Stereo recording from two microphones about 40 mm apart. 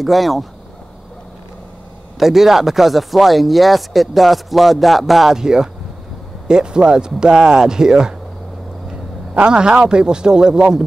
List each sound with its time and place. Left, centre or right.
0.0 s speech: centre
2.1 s speech: centre
5.3 s speech: centre
9.3 s a man's voice: right